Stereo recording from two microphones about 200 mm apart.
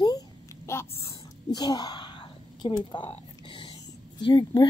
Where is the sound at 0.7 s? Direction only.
15° left (ahead or behind).